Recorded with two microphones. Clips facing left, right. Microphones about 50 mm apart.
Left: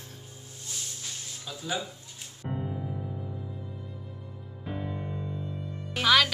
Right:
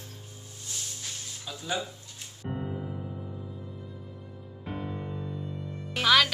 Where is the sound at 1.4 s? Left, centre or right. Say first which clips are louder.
Right 1 dB; centre.